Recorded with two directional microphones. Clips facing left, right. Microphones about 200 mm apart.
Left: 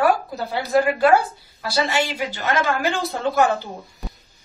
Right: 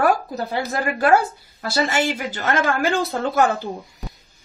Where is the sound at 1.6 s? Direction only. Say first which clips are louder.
Right 1 dB; 50° right (ahead or behind).